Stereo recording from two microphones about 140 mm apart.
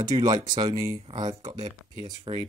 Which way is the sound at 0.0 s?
30° right (ahead or behind).